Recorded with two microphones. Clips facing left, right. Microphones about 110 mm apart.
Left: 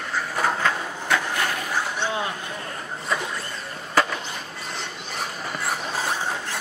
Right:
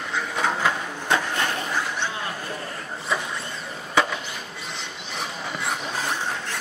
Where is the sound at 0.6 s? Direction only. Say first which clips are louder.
Even; 15° right (ahead or behind).